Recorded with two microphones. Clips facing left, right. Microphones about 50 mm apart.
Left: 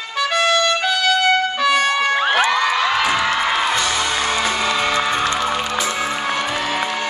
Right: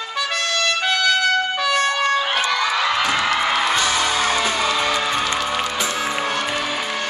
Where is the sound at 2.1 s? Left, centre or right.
Left.